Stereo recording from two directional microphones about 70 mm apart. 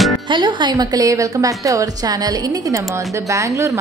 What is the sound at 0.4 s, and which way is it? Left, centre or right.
A woman's voice, right.